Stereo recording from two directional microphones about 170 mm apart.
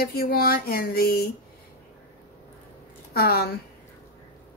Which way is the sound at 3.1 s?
65° left (ahead or behind).